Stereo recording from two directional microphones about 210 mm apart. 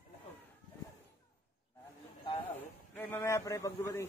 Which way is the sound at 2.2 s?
25° left (ahead or behind).